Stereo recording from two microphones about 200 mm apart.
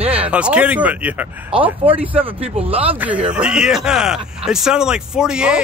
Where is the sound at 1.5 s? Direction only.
25° right (ahead or behind).